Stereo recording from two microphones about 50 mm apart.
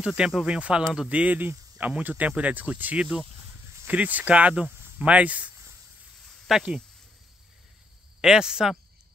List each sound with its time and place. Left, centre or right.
0.0 s speech: centre
0.5 s speech: right
4.6 s cricket: right
5.0 s speech: right
6.5 s speech: centre
8.2 s speech: centre